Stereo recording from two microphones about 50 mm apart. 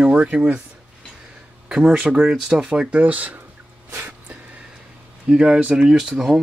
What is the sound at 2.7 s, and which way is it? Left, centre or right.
Speech, right.